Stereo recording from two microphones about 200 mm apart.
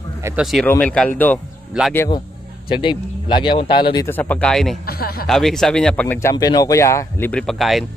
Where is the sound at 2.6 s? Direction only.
25° left (ahead or behind).